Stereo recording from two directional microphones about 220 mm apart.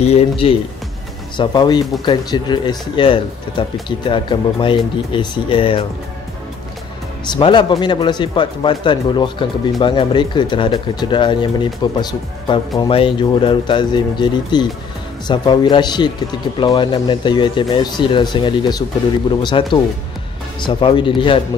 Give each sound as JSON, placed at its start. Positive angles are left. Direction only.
{"t": 0.0, "sound": "speech", "side_deg": 30}
{"t": 7.2, "sound": "speech", "side_deg": 20}